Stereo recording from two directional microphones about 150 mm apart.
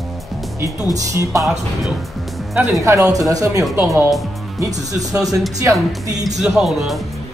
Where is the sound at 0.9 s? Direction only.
20° right (ahead or behind).